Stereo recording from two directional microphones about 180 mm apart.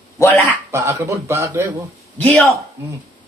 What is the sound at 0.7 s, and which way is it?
A man's voice, 15° right (ahead or behind).